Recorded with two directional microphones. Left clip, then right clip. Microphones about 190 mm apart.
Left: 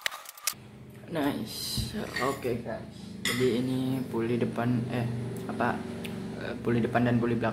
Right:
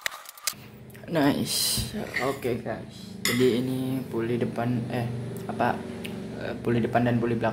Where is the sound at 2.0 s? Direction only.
10° right (ahead or behind).